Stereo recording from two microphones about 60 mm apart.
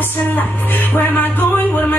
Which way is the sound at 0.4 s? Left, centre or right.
Left.